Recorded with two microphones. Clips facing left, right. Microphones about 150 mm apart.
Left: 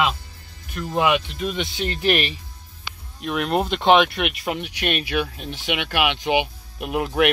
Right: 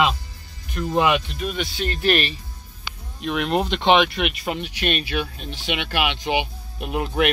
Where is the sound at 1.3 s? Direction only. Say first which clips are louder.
Left 1 dB; 20° left (ahead or behind).